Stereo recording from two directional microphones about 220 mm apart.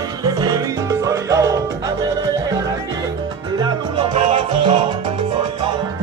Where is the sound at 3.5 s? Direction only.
20° right (ahead or behind).